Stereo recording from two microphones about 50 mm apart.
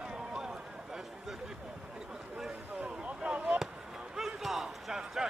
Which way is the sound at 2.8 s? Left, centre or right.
Right.